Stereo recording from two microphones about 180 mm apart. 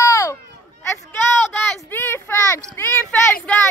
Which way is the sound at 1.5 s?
10° left (ahead or behind).